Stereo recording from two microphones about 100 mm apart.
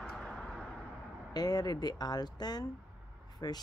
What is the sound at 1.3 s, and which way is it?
Speech, 40° left (ahead or behind).